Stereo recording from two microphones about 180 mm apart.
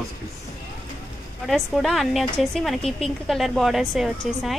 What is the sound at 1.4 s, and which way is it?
Speech, centre (ahead or behind).